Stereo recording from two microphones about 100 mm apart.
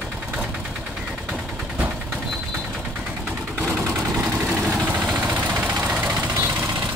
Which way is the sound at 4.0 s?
15° right (ahead or behind).